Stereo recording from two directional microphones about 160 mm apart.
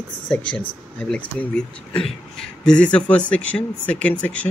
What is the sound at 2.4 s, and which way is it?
Speech, 5° left (ahead or behind).